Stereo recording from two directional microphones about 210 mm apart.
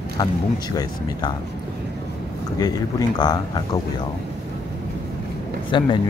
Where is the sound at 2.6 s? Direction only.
20° left (ahead or behind).